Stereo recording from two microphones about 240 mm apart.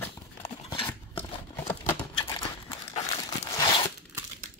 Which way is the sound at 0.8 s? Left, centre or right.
Centre.